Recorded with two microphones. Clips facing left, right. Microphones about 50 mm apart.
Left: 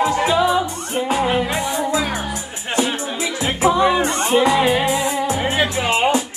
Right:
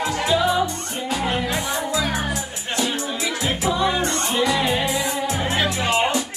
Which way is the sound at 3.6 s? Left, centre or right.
Left.